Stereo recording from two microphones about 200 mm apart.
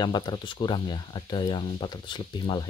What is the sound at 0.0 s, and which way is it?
Speech, 20° left (ahead or behind).